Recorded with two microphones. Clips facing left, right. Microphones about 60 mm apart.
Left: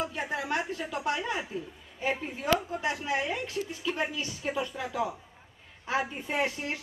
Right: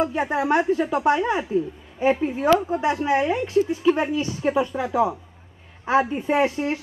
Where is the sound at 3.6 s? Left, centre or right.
Right.